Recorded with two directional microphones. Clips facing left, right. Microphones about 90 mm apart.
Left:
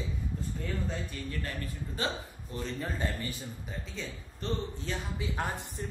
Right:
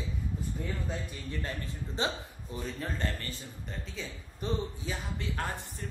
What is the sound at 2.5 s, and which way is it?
Speech, 5° right (ahead or behind).